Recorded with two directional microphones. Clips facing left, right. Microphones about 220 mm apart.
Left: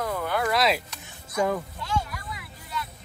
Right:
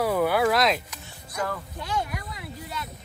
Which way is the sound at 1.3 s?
15° left (ahead or behind).